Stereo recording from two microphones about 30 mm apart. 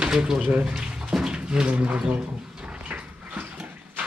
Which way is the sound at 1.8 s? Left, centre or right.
Right.